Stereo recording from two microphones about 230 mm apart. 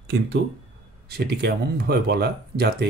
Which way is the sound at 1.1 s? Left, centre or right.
Right.